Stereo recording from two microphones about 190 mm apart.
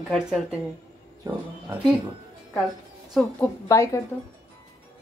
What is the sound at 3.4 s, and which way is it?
Speech, 15° left (ahead or behind).